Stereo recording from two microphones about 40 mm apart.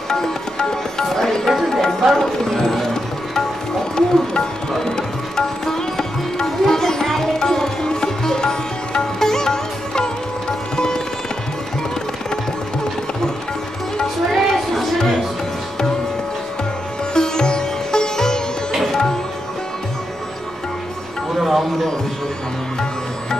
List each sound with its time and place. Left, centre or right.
0.1 s music: centre
1.5 s music: centre
2.1 s music: centre
4.0 s music: centre
14.3 s a sound: centre
17.1 s sitar: left
18.8 s music: centre
21.4 s music: centre